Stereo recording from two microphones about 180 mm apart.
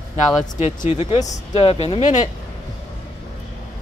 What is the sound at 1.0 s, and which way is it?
Speech, 35° left (ahead or behind).